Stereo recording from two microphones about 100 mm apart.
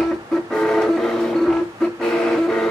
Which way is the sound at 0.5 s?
5° left (ahead or behind).